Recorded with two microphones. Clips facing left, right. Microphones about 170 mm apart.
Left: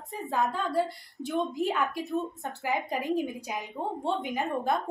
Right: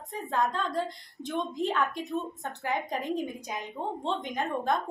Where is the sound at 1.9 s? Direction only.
20° right (ahead or behind).